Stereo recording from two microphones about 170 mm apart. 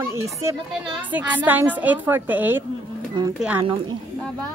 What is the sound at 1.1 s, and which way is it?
A woman's voice, 10° right (ahead or behind).